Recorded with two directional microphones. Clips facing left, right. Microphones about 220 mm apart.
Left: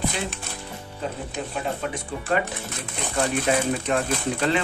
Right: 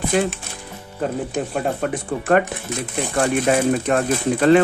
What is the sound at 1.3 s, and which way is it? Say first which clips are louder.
Speech: right 6 dB; 50° right (ahead or behind).